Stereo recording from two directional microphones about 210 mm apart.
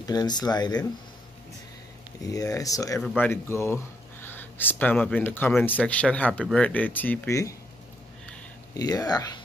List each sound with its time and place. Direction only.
0.0 s speech: 20° left (ahead or behind)
2.3 s speech: 15° left (ahead or behind)
8.7 s speech: 20° left (ahead or behind)